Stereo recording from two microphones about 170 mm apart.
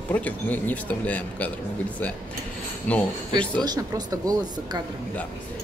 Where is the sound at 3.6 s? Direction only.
20° right (ahead or behind).